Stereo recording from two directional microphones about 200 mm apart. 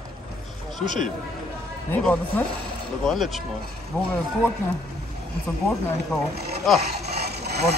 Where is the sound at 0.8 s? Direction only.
40° left (ahead or behind).